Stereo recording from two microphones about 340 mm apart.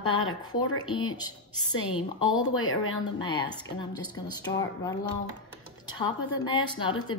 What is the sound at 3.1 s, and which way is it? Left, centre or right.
A woman's voice, centre.